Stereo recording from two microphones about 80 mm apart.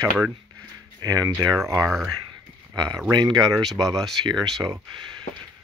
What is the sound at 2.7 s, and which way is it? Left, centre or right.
Speech, right.